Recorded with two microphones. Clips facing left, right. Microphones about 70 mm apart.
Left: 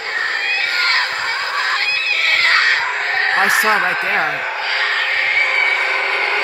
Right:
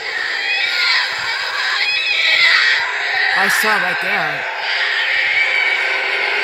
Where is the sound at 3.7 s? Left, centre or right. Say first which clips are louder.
Left 1 dB; left.